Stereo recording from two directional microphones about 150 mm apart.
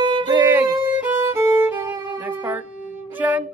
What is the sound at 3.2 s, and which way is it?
Speech, 10° right (ahead or behind).